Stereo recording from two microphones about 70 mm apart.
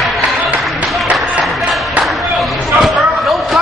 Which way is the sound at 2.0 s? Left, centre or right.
Centre.